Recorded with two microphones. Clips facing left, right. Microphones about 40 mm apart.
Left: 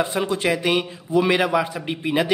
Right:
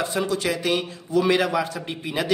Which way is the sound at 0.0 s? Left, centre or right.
Left.